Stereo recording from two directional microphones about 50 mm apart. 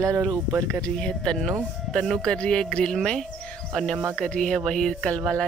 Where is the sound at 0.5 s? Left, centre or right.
Right.